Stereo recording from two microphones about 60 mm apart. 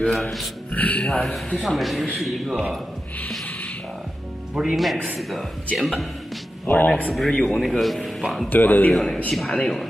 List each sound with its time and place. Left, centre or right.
0.0 s a man's voice: centre
0.7 s speech: left
1.2 s speech: centre
4.6 s speech: centre
4.9 s speech: right
5.8 s speech: centre
6.6 s speech: left
7.2 s a man's voice: centre
7.4 s speech: centre
8.5 s speech: left
8.9 s speech: centre